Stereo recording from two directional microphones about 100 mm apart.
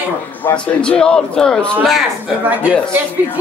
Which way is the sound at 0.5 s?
15° left (ahead or behind).